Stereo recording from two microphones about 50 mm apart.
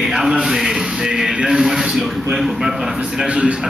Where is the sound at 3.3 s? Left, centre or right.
Right.